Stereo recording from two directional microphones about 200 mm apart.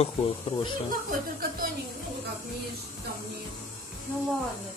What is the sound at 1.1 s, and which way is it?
Speech, 45° right (ahead or behind).